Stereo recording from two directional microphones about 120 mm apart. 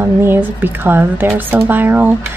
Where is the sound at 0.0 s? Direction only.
20° right (ahead or behind).